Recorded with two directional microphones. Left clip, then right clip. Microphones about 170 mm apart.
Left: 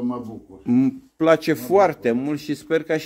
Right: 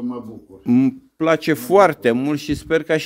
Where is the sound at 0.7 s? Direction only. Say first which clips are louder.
Right 3 dB; 30° right (ahead or behind).